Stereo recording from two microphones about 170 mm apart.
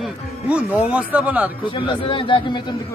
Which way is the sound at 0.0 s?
5° right (ahead or behind).